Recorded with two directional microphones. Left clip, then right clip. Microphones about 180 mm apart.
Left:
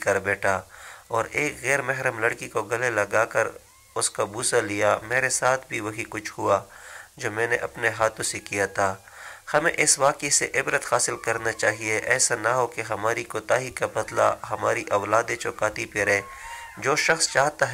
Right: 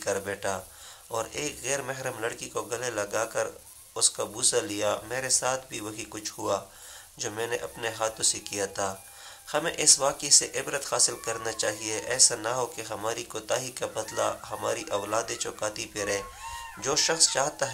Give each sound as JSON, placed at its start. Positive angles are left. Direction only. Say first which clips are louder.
{"t": 0.0, "sound": "speech", "louder": "left 7 dB", "side_deg": 20}